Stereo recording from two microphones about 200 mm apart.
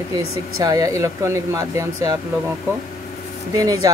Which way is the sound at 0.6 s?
15° right (ahead or behind).